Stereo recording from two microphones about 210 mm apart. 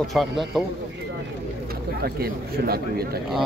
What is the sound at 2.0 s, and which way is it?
A man's voice, 45° right (ahead or behind).